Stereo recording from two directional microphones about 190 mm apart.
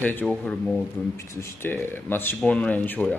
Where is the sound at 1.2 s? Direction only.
15° left (ahead or behind).